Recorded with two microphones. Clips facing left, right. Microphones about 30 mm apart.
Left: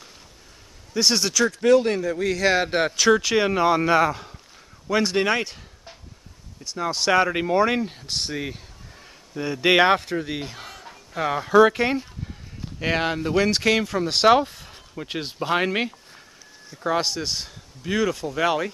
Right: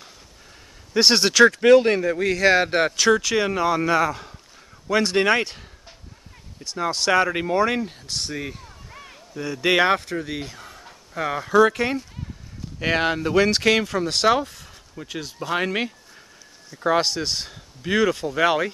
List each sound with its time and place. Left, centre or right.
0.9 s speech: right
1.3 s speech: right
1.6 s speech: right; by 3.2 s centre
3.2 s speech: centre
4.8 s speech: centre
6.6 s speech: centre
12.7 s speech: centre
14.1 s speech: centre
14.5 s a sound: centre
15.0 s speech: left
15.3 s speech: centre
16.8 s speech: centre